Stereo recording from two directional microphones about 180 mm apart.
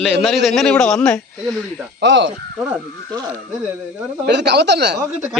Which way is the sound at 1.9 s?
80° right.